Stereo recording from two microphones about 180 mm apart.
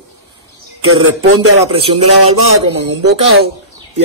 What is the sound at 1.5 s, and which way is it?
Speech, 30° right (ahead or behind).